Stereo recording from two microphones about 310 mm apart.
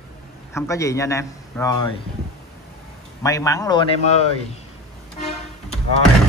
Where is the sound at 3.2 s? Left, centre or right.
Centre.